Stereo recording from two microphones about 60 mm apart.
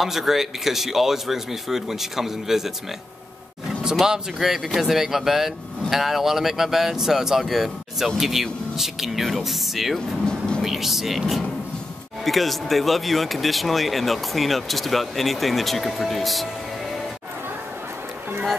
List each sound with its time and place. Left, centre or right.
0.0 s speech: centre
4.0 s speech: centre
9.9 s speech: centre
10.6 s speech: centre